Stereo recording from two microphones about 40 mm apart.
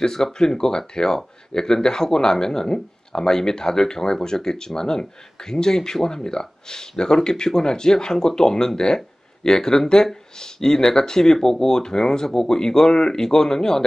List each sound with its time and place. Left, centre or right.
0.0 s speech: centre